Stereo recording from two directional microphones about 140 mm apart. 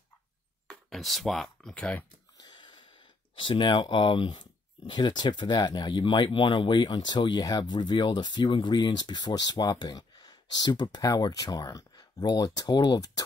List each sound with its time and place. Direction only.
0.7 s speech: centre (ahead or behind)
2.4 s wheeze: 35° left (ahead or behind)
3.3 s speech: 35° left (ahead or behind)